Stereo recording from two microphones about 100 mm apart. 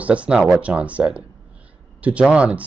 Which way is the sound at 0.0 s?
15° right (ahead or behind).